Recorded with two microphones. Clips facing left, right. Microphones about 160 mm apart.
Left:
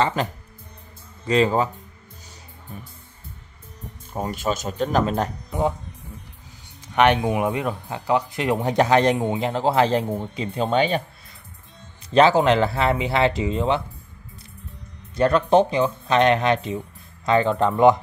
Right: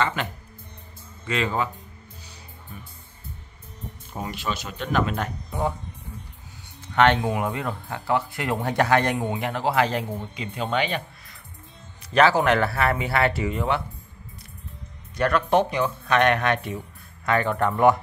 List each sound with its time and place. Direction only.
0.0 s speech: 35° left (ahead or behind)
4.2 s speech: 45° left (ahead or behind)
5.5 s speech: 20° left (ahead or behind)
6.9 s speech: 15° left (ahead or behind); by 11.0 s 35° left (ahead or behind)
12.1 s speech: 25° left (ahead or behind)
15.1 s speech: 25° left (ahead or behind)